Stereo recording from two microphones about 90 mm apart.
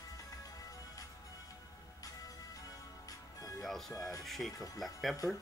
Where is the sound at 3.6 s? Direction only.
5° left (ahead or behind).